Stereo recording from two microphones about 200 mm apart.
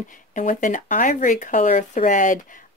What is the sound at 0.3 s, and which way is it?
Speech, 40° left (ahead or behind).